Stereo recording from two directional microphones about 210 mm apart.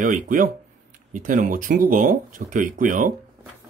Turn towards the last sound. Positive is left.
turn(degrees=-40)  # may be behind; listen again after turning